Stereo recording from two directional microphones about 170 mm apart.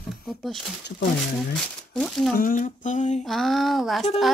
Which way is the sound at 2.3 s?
50° left (ahead or behind).